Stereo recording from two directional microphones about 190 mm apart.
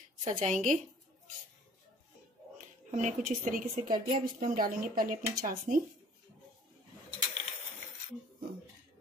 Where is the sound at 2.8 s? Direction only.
40° right (ahead or behind).